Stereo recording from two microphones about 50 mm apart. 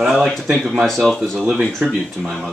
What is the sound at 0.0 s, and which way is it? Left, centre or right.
Speech, centre.